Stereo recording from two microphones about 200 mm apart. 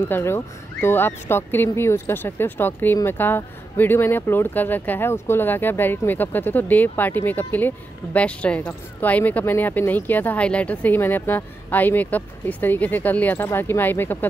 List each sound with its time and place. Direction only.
0.1 s speech: 10° left (ahead or behind)